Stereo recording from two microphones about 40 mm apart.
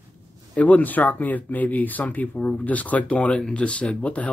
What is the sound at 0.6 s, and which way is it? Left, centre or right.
Speech, left.